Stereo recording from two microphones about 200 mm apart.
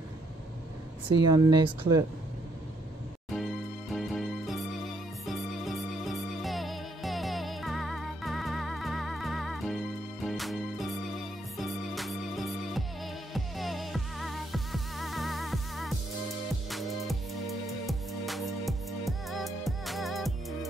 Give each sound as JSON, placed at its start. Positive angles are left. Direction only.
{"t": 1.0, "sound": "speech", "side_deg": -20}
{"t": 3.9, "sound": "music", "side_deg": 0}